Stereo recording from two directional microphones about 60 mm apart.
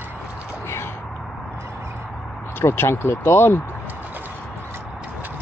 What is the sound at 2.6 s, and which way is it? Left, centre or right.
Speech, left.